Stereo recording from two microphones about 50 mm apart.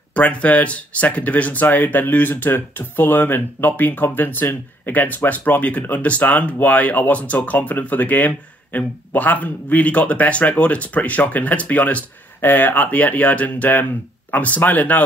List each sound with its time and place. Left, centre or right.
0.1 s speech: left